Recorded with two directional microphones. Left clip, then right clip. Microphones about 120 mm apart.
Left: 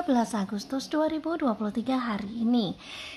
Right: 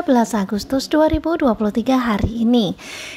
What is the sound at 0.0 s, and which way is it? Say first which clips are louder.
A woman's voice: right 10 dB; 40° right (ahead or behind).